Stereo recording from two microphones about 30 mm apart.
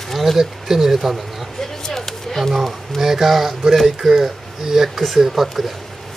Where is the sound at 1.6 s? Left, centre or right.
Centre.